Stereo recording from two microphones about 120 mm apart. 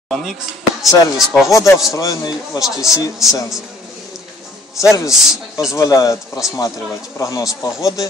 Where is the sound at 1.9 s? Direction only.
30° left (ahead or behind).